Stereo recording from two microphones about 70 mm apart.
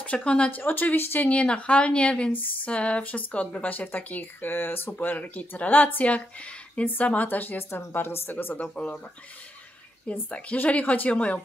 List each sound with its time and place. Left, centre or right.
0.0 s speech: centre
0.5 s speech: left
4.9 s speech: left
8.6 s speech: centre
10.3 s speech: centre